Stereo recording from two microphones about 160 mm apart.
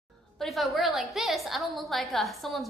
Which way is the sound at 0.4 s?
Centre (ahead or behind).